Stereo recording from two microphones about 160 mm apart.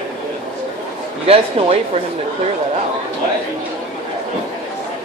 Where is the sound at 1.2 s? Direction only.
40° right (ahead or behind).